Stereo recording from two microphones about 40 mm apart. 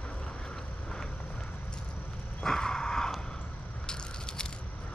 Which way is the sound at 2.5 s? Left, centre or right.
Centre.